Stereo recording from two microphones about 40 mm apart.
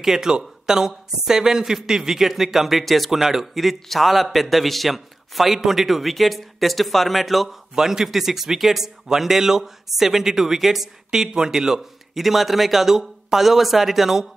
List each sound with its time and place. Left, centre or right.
0.0 s a man's voice: centre
7.7 s a man's voice: centre
11.1 s a man's voice: centre
12.2 s speech: centre